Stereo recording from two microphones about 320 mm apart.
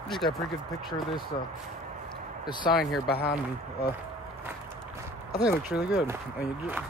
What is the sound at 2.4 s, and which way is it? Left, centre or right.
Speech, centre.